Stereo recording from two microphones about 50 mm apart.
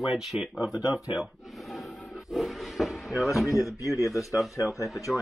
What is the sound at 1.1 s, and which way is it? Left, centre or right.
Drawer open or close, centre.